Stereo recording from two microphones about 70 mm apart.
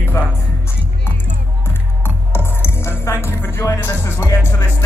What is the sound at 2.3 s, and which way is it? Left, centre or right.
Music, left.